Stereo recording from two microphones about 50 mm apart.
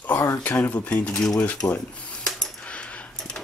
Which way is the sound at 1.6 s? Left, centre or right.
Left.